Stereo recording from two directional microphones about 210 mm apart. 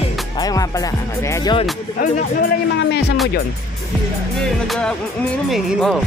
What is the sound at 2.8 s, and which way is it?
Speech, 55° left (ahead or behind).